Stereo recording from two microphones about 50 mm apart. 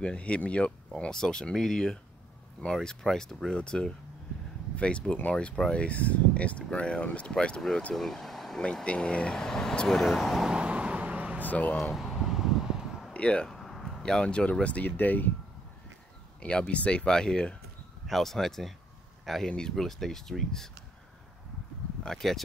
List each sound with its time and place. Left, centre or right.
0.0 s speech: left
7.9 s speech: centre
8.8 s speech: left
9.3 s speech: centre
10.4 s vehicle: centre
11.4 s speech: left
11.9 s wind: centre
13.1 s speech: left
13.5 s a sound: centre
14.0 s speech: centre; by 15.2 s left
16.3 s speech: left
18.0 s speech: centre
22.0 s speech: centre